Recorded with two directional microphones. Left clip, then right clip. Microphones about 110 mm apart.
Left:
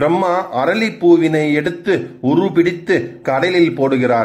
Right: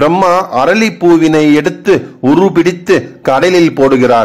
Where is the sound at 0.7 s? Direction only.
40° right (ahead or behind).